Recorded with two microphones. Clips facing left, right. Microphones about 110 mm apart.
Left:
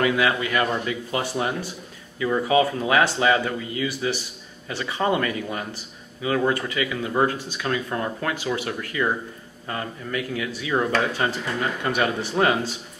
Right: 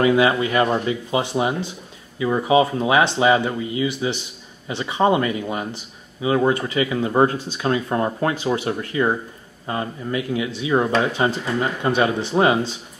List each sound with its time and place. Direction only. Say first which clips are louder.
0.0 s speech: right 5 dB; 25° right (ahead or behind)